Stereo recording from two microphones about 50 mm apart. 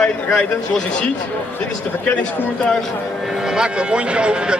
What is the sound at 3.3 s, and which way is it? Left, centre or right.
Speech, centre.